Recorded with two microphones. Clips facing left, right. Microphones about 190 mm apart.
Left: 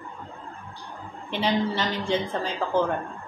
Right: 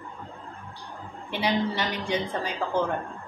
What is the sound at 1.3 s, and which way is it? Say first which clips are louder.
A woman's voice: left 1 dB; 10° right (ahead or behind).